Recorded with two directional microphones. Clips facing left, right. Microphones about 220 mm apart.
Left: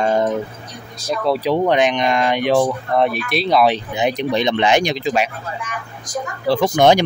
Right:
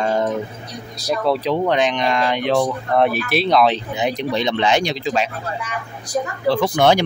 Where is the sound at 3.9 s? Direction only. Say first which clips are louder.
Left 2 dB; 15° left (ahead or behind).